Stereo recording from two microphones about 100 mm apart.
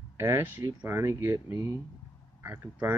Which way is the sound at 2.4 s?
20° right (ahead or behind).